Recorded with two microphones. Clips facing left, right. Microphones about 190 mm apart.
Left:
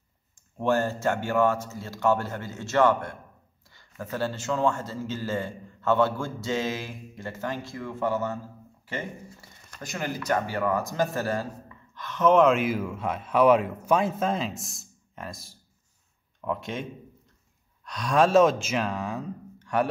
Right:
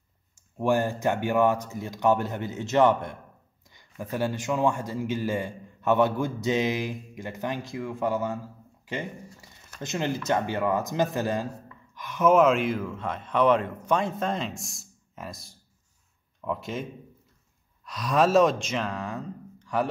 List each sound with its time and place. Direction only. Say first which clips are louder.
0.6 s a man's voice: right 1 dB; 15° right (ahead or behind)
17.8 s speech: left 1 dB; centre (ahead or behind)